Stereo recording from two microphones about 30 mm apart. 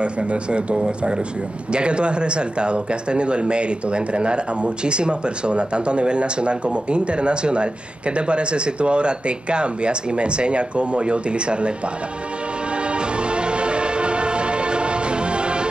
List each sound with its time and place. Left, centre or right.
0.0 s speech: right
12.8 s music: right